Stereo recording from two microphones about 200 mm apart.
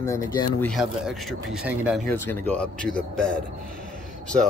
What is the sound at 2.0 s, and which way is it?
Speech, 5° left (ahead or behind).